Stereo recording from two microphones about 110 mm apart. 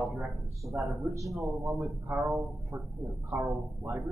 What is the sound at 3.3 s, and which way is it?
Speech, 20° right (ahead or behind).